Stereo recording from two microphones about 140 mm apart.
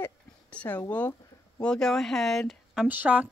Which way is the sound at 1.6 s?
5° left (ahead or behind).